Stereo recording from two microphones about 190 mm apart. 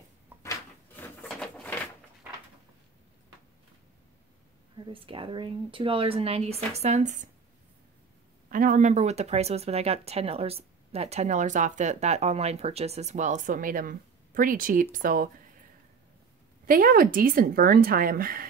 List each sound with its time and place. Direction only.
0.4 s a sound: 10° left (ahead or behind)
4.7 s speech: 25° right (ahead or behind)
8.5 s speech: 45° right (ahead or behind)
16.6 s a woman's voice: 45° right (ahead or behind)